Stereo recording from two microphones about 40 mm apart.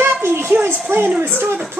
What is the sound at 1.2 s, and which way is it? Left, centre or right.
Speech, right.